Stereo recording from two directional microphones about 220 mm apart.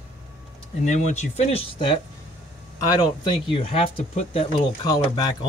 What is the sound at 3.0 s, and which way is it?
A man's voice, 20° left (ahead or behind).